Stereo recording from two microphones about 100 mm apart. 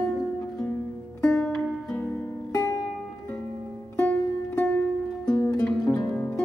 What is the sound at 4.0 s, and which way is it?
Music, 10° left (ahead or behind).